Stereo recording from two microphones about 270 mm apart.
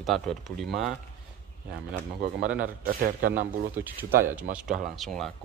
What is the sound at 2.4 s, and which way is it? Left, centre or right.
Speech, centre.